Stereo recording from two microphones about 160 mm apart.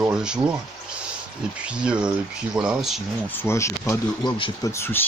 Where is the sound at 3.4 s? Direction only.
15° left (ahead or behind).